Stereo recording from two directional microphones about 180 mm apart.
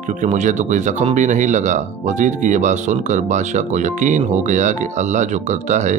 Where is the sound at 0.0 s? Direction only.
45° right (ahead or behind).